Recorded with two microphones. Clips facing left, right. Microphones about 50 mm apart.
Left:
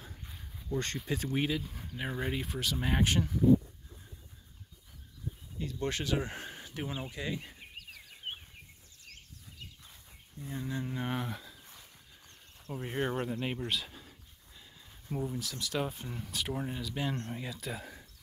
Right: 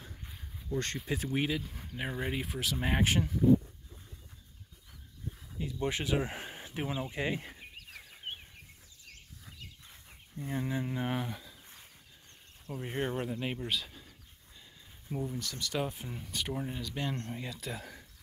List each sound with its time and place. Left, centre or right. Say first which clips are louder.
0.7 s speech: even; centre
0.9 s speech: even; centre
2.8 s speech: even; centre
5.6 s speech: right 1 dB; centre; by 7.5 s right
10.0 s a sound: right 4 dB; right
10.7 s speech: right 2 dB; centre
11.0 s speech: right 1 dB; centre
11.6 s a sound: even; right
12.9 s speech: left 1 dB; centre
13.2 s speech: left 1 dB; centre